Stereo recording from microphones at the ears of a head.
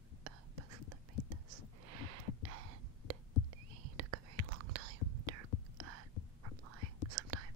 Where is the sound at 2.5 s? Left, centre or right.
Right.